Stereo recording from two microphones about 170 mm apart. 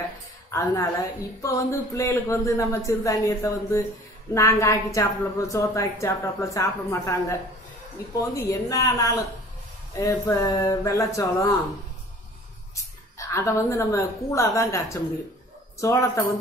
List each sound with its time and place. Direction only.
0.5 s a woman's voice: 20° left (ahead or behind)
8.5 s speech: 20° left (ahead or behind)
12.7 s a woman's voice: 15° left (ahead or behind)